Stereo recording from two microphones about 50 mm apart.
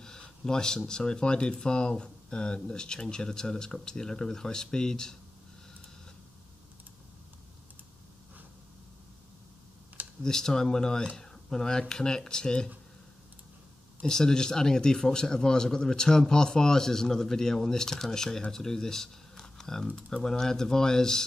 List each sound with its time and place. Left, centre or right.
0.0 s a man's voice: centre
10.2 s a man's voice: centre
14.0 s a man's voice: centre